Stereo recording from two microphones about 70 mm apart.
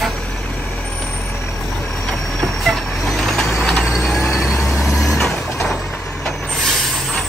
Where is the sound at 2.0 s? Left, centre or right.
Centre.